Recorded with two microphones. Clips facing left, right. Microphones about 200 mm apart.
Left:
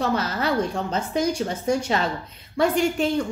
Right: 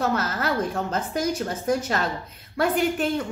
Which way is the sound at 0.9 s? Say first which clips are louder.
Left 4 dB; centre (ahead or behind).